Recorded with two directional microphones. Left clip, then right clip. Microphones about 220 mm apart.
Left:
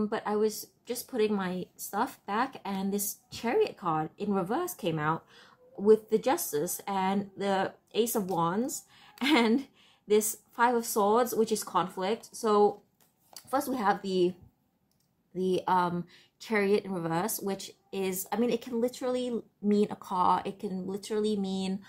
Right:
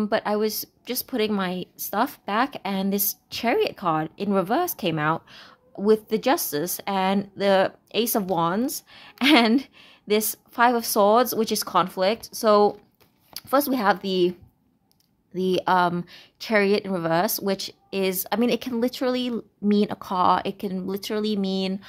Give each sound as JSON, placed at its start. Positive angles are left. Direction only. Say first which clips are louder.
{"t": 0.0, "sound": "a woman's voice", "louder": "right 6 dB", "side_deg": -45}
{"t": 15.3, "sound": "a woman's voice", "louder": "right 6 dB", "side_deg": -40}